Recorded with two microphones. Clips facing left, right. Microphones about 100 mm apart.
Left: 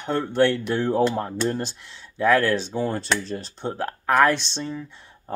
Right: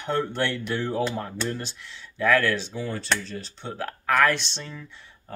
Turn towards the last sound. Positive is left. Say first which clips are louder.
# left 4 dB
turn(degrees=20)  # may be behind; listen again after turning